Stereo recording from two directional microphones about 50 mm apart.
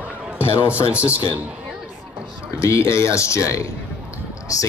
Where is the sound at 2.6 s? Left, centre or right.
Left.